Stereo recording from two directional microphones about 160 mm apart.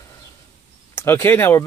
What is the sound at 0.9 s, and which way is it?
Speech, 15° left (ahead or behind).